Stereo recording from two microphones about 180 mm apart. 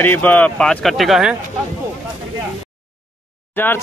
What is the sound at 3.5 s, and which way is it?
Speech, 10° left (ahead or behind).